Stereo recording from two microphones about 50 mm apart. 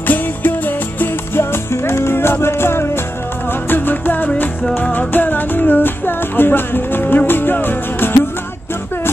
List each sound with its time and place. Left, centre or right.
0.0 s music: left
3.7 s music: left